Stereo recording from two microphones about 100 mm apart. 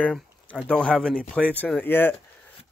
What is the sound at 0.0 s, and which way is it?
Speech, 10° left (ahead or behind).